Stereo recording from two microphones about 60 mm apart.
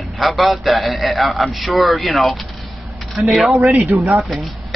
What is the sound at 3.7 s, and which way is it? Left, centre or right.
Speech, right.